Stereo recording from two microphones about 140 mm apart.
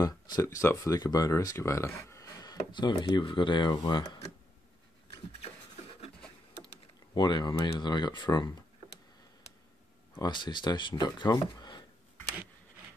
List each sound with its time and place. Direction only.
0.0 s speech: 25° left (ahead or behind)
7.2 s speech: 30° left (ahead or behind)
10.1 s speech: 30° left (ahead or behind)